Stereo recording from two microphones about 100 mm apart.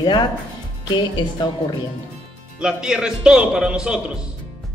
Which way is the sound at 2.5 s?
10° right (ahead or behind).